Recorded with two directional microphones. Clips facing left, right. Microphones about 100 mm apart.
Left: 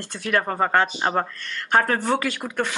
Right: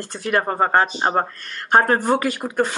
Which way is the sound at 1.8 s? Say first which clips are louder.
Right 4 dB; 40° right (ahead or behind).